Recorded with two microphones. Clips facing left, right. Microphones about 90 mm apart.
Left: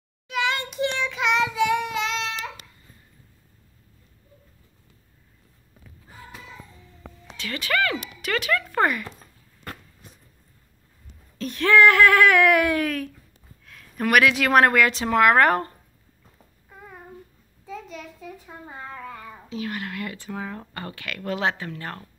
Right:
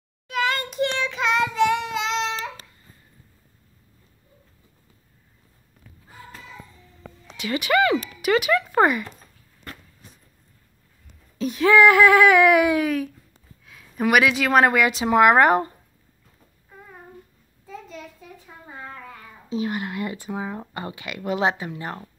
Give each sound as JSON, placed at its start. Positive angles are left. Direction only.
{"t": 0.4, "sound": "a sound", "side_deg": 0}
{"t": 0.9, "sound": "child singing", "side_deg": 5}
{"t": 7.3, "sound": "speech", "side_deg": -15}
{"t": 11.3, "sound": "a woman's voice", "side_deg": -5}
{"t": 19.5, "sound": "speech", "side_deg": -25}